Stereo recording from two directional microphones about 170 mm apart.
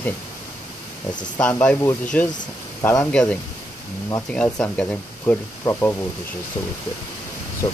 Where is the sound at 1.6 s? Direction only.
10° left (ahead or behind).